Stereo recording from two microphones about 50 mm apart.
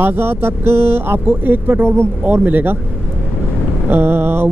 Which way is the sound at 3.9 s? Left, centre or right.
Right.